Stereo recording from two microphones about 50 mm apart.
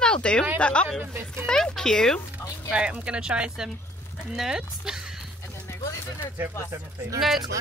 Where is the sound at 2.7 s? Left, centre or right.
Centre.